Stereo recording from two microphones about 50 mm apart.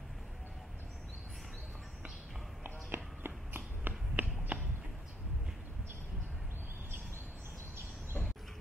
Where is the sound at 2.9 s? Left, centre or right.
Right.